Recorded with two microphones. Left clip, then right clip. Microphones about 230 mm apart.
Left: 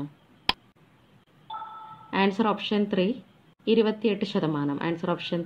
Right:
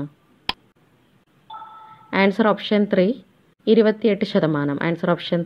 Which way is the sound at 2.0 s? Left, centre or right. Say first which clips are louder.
Right 7 dB; right.